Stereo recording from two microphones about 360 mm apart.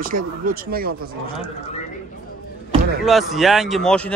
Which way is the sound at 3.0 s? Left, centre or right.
Centre.